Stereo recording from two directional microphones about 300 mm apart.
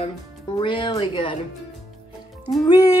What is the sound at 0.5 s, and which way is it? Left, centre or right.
Speech, centre.